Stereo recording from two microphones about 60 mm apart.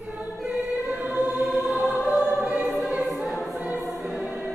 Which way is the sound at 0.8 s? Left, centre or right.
Right.